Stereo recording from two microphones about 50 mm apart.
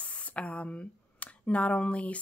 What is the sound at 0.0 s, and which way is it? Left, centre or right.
Speech, left.